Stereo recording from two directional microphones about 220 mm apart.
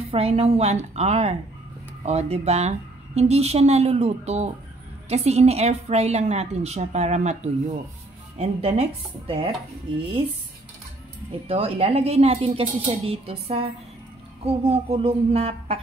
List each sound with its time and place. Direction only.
0.1 s a woman's voice: 30° right (ahead or behind)
11.4 s a woman's voice: 25° right (ahead or behind)